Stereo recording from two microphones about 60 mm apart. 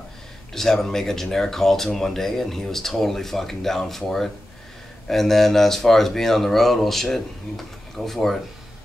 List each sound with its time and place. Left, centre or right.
0.6 s speech: centre